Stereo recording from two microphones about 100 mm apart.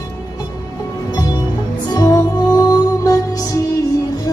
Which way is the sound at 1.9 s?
35° left (ahead or behind).